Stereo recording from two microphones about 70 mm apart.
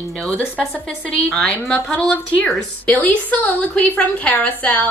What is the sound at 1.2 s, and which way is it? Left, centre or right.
Speech, centre.